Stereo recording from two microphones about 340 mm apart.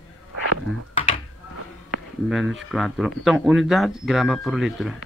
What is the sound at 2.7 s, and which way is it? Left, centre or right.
Speech, centre.